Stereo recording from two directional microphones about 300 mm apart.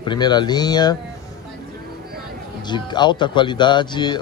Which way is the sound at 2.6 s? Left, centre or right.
Centre.